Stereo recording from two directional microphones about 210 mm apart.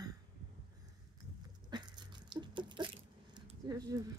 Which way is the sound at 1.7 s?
20° right (ahead or behind).